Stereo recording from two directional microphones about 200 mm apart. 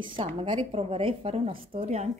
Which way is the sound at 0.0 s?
25° right (ahead or behind).